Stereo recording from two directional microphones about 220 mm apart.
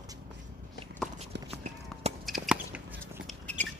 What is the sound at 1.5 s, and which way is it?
Run, 30° right (ahead or behind).